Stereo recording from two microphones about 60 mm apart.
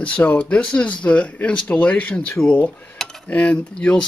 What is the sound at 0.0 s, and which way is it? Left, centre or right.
Speech, left.